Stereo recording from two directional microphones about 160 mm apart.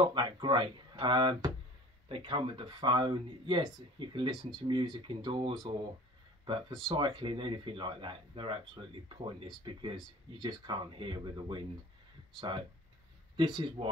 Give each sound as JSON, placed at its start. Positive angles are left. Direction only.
{"t": 0.0, "sound": "speech", "side_deg": -30}